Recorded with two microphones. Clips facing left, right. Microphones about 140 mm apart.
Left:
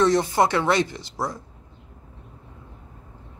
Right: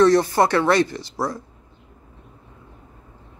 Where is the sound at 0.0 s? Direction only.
20° left (ahead or behind).